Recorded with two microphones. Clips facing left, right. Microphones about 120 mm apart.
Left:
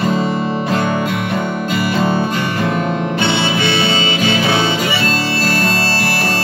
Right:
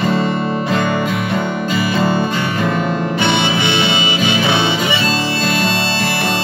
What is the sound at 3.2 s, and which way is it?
Music, 20° right (ahead or behind).